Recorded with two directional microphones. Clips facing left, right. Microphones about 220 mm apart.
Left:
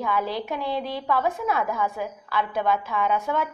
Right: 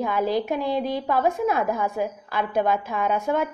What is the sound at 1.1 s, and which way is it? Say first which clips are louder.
A woman's voice: right 2 dB; 45° right (ahead or behind).